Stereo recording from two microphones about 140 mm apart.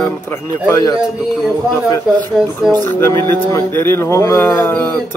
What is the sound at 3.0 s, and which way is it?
A man's voice, 20° left (ahead or behind).